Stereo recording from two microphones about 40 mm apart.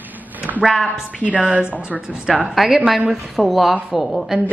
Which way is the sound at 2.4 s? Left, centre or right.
Centre.